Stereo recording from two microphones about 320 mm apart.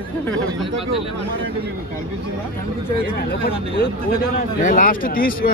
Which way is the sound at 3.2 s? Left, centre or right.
Left.